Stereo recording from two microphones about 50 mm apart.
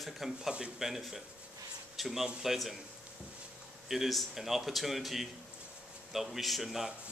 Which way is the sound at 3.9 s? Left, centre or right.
Centre.